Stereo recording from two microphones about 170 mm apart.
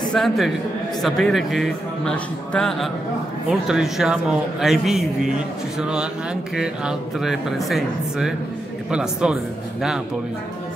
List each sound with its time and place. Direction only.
0.1 s speech: centre (ahead or behind)